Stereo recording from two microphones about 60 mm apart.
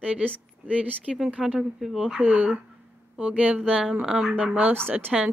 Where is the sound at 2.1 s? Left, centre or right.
Right.